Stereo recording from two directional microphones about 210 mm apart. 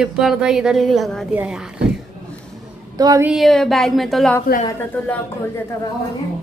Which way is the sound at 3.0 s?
15° right (ahead or behind).